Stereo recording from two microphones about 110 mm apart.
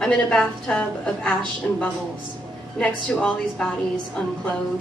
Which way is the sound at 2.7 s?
10° left (ahead or behind).